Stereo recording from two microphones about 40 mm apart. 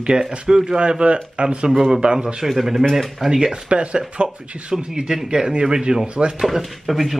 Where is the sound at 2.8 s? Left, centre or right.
Centre.